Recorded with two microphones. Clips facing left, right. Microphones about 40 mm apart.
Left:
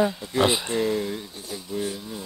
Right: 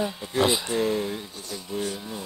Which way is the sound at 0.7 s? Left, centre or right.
Centre.